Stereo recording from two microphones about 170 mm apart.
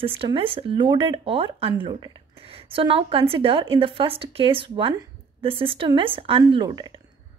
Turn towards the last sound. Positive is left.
turn(degrees=-25)  # may be behind; listen again after turning